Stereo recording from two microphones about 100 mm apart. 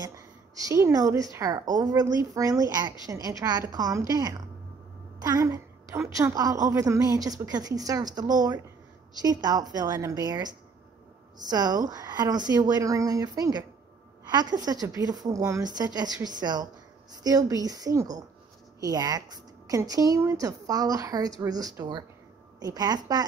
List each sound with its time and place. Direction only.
0.6 s a woman's voice: 30° right (ahead or behind)